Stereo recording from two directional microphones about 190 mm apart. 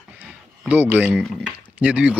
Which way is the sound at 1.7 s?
5° right (ahead or behind).